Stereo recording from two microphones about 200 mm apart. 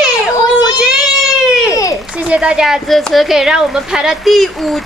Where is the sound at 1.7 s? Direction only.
15° left (ahead or behind).